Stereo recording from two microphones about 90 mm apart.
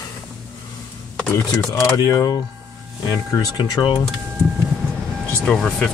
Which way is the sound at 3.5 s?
55° left (ahead or behind).